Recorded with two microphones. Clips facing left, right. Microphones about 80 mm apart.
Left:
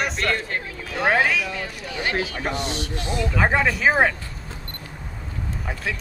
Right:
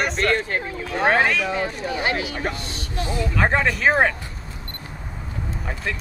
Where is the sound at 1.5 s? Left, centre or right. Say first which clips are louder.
Right 6 dB; right.